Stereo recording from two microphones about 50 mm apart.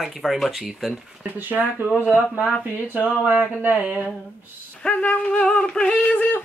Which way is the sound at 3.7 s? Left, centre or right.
Right.